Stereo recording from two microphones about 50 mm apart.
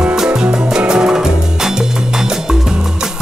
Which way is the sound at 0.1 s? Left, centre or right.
Centre.